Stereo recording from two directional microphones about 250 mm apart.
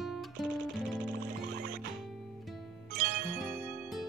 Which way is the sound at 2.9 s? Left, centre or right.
Right.